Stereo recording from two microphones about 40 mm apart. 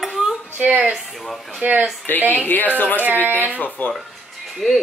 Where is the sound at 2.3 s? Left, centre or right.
Left.